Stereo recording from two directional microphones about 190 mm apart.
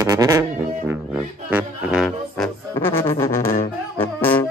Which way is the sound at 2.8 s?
10° left (ahead or behind).